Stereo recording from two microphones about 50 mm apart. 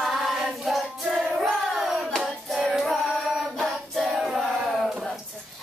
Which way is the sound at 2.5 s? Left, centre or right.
Centre.